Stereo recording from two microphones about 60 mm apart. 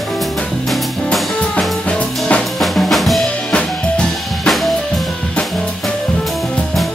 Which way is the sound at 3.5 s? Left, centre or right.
Centre.